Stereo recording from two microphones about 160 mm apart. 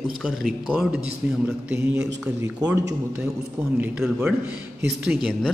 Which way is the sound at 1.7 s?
15° right (ahead or behind).